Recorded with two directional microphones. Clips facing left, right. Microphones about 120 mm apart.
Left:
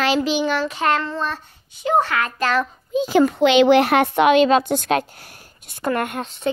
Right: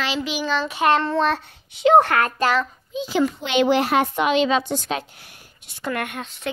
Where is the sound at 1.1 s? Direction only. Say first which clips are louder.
Right 5 dB; 70° right (ahead or behind); by 2.3 s 55° right (ahead or behind).